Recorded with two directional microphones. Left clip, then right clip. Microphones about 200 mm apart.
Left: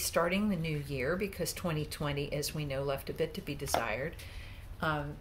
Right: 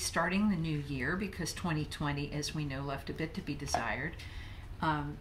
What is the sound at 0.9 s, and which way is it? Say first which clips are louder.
Speech: left 4 dB; 15° left (ahead or behind).